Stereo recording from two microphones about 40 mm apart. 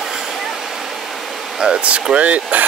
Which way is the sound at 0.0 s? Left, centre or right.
Centre.